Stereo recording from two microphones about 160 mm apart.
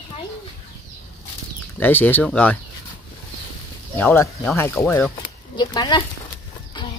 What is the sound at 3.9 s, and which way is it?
Speech, 15° left (ahead or behind).